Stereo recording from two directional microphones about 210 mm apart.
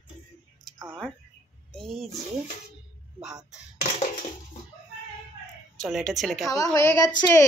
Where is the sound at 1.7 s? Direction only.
Centre (ahead or behind).